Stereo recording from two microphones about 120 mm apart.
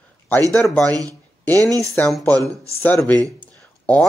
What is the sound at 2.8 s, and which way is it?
Speech, 15° left (ahead or behind).